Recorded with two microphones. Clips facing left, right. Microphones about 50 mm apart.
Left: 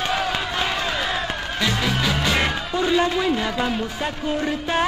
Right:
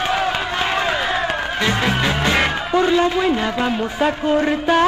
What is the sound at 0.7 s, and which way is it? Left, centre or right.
Music, centre.